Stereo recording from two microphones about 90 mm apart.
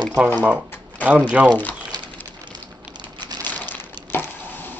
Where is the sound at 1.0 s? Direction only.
15° right (ahead or behind).